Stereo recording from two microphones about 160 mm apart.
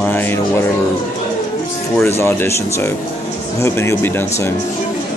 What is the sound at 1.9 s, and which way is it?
Speech, 15° left (ahead or behind).